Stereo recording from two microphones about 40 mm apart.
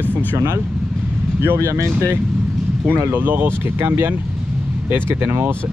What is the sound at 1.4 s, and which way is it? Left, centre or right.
Speech, right.